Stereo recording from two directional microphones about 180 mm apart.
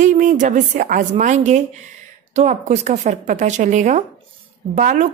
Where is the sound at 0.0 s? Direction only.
45° right (ahead or behind).